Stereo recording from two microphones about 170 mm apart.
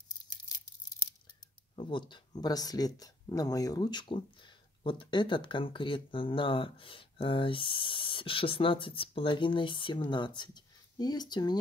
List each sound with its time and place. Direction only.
1.8 s speech: 30° left (ahead or behind)